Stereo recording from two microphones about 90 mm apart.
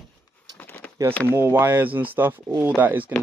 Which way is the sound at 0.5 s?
20° left (ahead or behind).